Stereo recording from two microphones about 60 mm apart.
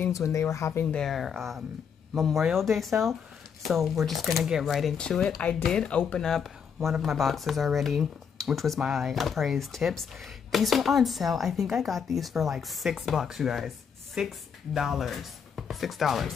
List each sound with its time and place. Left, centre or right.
0.1 s speech: left
0.9 s speech: centre
4.9 s speech: centre